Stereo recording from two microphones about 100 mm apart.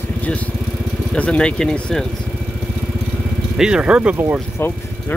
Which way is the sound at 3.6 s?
10° right (ahead or behind).